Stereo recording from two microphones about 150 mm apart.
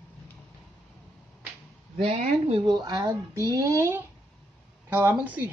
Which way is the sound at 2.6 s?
25° right (ahead or behind).